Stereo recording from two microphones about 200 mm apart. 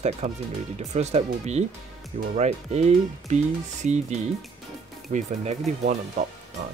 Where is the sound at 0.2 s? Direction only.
35° right (ahead or behind).